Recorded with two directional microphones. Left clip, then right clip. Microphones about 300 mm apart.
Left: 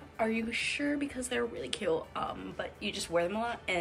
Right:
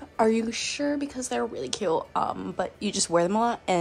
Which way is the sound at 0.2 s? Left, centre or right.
Centre.